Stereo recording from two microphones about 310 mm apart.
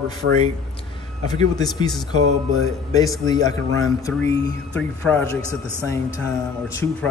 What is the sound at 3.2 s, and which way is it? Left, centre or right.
A man's voice, centre.